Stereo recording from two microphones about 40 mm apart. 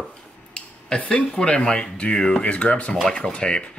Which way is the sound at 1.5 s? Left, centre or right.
Left.